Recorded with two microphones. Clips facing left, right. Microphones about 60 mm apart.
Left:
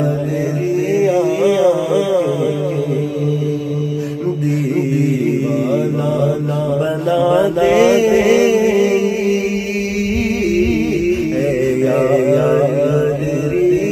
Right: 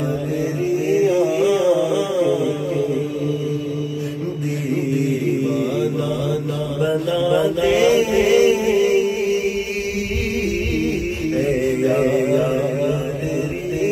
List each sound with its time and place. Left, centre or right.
7.2 s mantra: left
7.7 s mantra: left
8.3 s music: left
11.9 s mantra: left